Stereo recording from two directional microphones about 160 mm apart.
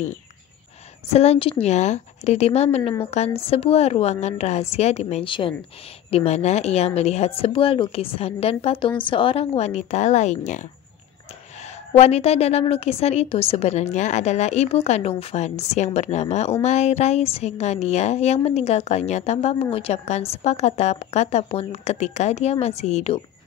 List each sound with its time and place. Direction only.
1.1 s a woman's voice: 40° left (ahead or behind)
11.9 s a woman's voice: 40° left (ahead or behind)